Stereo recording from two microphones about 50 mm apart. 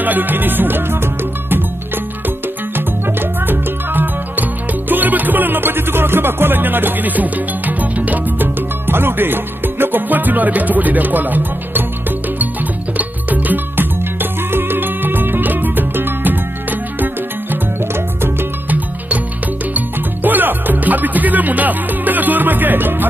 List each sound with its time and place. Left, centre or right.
0.0 s music: right
3.2 s music: right
12.9 s music: right
20.2 s music: right